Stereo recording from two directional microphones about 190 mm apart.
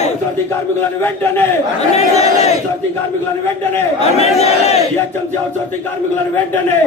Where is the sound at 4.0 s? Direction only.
35° left (ahead or behind).